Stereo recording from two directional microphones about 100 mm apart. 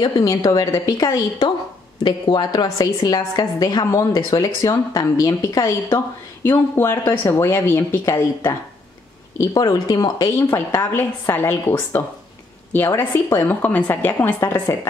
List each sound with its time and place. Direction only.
0.0 s a woman's voice: 40° left (ahead or behind)
2.0 s a woman's voice: 50° left (ahead or behind); by 7.8 s 25° left (ahead or behind)
9.4 s a woman's voice: 35° left (ahead or behind)
10.3 s a woman's voice: 25° left (ahead or behind)